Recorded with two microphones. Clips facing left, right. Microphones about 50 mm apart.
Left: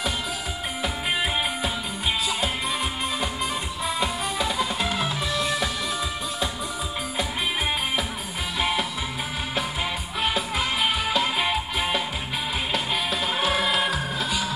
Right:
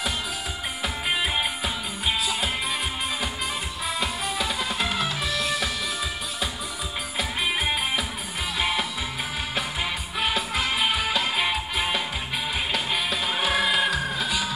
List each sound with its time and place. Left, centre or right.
0.8 s music: centre
3.8 s music: centre
8.5 s music: centre
10.2 s music: centre